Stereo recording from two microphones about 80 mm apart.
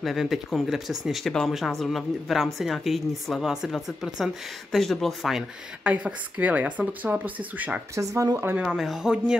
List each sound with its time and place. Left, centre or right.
0.0 s speech: centre
5.9 s speech: centre
7.9 s speech: right
8.6 s speech: centre